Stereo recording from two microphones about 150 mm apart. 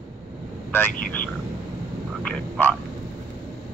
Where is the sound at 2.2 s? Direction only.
10° left (ahead or behind).